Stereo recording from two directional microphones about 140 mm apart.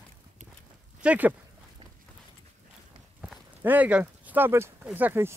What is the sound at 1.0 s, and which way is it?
Speech, 10° right (ahead or behind).